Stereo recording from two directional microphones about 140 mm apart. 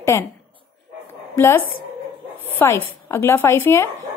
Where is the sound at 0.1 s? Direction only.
20° left (ahead or behind).